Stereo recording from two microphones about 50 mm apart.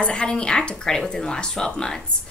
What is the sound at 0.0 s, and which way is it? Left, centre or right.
A woman's voice, centre.